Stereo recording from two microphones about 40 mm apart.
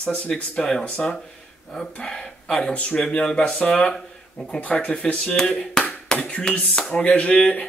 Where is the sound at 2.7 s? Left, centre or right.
Left.